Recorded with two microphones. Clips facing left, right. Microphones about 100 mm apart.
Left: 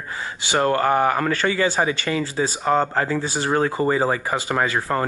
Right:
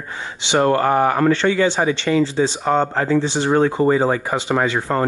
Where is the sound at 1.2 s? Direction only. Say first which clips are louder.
Right 5 dB; 5° left (ahead or behind).